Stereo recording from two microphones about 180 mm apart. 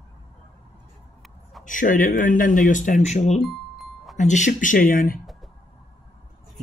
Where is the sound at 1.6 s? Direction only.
45° left (ahead or behind).